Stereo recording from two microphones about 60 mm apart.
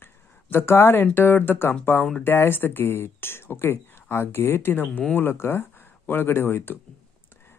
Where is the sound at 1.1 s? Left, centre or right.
Left.